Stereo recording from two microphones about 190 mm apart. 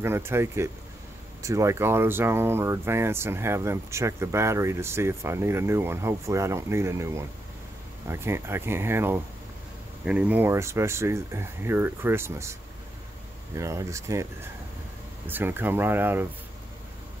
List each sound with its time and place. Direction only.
0.0 s speech: 15° right (ahead or behind)
13.6 s speech: 15° right (ahead or behind)